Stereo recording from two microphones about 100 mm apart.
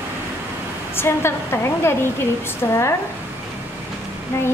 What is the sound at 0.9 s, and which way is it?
Speech, 25° left (ahead or behind).